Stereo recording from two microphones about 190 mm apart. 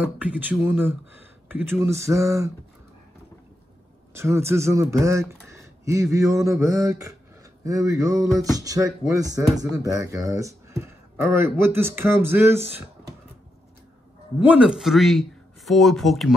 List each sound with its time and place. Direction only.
0.2 s speech: 10° right (ahead or behind)
4.1 s speech: 15° right (ahead or behind)
14.4 s speech: 5° right (ahead or behind)